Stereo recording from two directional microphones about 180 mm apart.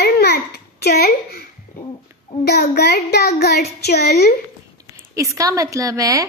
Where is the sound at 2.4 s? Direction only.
60° left (ahead or behind).